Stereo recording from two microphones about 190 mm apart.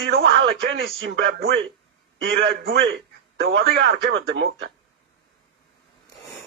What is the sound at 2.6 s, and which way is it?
A man's voice, 65° right (ahead or behind).